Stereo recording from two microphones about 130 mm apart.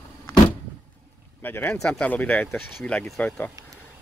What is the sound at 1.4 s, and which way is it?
Speech, 15° left (ahead or behind).